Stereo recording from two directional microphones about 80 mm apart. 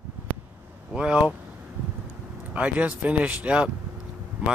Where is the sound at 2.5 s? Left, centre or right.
Centre.